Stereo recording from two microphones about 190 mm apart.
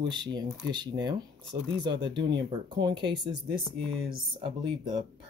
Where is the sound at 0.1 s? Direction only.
25° right (ahead or behind).